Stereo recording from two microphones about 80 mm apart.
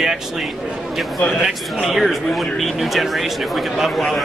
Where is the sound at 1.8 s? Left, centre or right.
Centre.